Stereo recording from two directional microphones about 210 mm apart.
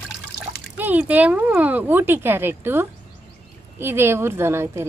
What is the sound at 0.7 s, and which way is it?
Speech, 10° right (ahead or behind).